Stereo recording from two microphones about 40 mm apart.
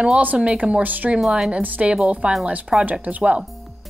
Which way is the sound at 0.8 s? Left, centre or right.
Right.